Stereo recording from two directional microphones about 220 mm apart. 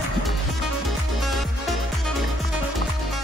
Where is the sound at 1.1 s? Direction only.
Centre (ahead or behind).